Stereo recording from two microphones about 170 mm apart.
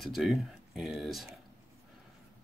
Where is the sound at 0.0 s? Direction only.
Centre (ahead or behind).